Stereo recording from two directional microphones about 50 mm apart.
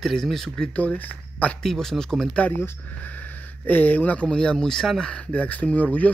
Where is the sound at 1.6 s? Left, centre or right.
Centre.